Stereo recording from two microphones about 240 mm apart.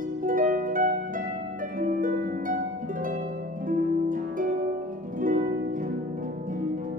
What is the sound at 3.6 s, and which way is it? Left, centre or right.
Harp, right.